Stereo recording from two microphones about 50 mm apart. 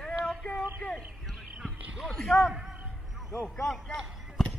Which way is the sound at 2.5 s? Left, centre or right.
Centre.